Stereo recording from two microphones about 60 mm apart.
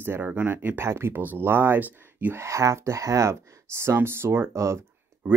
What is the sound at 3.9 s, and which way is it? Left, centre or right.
Speech, right.